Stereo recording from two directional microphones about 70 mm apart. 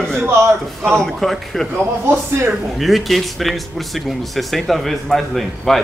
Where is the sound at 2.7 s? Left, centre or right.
Centre.